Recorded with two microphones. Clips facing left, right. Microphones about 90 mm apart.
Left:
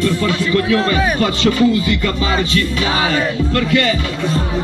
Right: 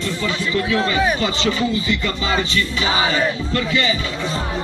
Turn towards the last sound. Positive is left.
turn(degrees=55)  # may be behind; listen again after turning